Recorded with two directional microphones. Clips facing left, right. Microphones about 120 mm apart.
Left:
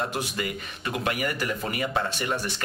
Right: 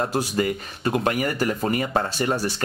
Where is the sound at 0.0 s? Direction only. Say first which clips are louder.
Right 6 dB; 35° right (ahead or behind).